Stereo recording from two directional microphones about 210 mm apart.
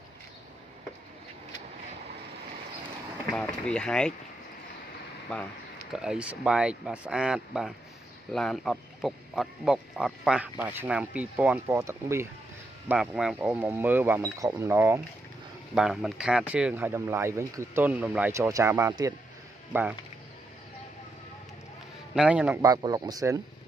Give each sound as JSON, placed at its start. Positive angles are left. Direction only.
{"t": 3.3, "sound": "speech", "side_deg": 5}
{"t": 5.9, "sound": "speech", "side_deg": -5}
{"t": 22.1, "sound": "speech", "side_deg": -5}
{"t": 22.7, "sound": "speech", "side_deg": -15}